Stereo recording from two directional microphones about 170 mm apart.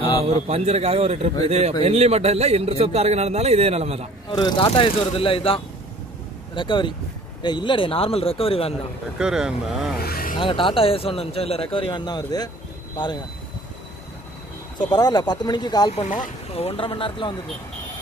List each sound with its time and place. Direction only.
0.5 s a man's voice: 40° right (ahead or behind)
4.3 s speech: 25° left (ahead or behind)
9.2 s speech: 5° right (ahead or behind)
9.9 s speech: 60° left (ahead or behind)
10.4 s speech: 30° left (ahead or behind)
14.8 s speech: 25° left (ahead or behind)
15.9 s speech: 45° left (ahead or behind); by 17.4 s 30° left (ahead or behind)